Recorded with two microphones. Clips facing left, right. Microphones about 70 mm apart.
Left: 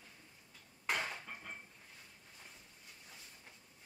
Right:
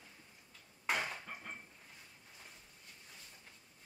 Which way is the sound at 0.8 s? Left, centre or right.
Centre.